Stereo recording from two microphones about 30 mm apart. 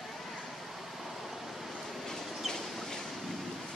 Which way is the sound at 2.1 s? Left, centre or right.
Centre.